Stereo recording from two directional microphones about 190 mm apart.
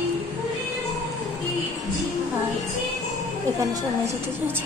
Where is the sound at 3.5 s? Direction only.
15° right (ahead or behind).